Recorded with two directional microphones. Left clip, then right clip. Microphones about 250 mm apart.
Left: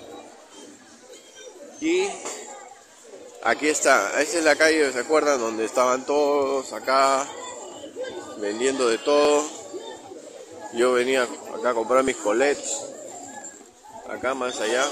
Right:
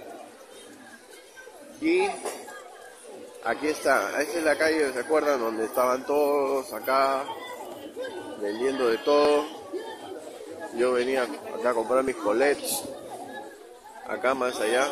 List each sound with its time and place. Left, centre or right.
1.8 s speech: centre
3.4 s a man's voice: centre
8.6 s a man's voice: centre
10.8 s a man's voice: centre
14.0 s speech: centre